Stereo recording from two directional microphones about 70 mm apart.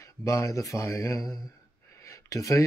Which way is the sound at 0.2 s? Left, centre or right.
Left.